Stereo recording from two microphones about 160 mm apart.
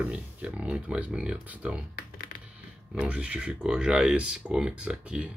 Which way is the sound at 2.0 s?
60° left (ahead or behind).